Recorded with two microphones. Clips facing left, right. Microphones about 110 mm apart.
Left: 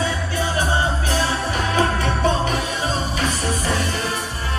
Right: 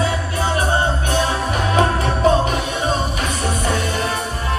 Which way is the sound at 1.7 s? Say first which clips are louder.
Right 3 dB; 30° right (ahead or behind).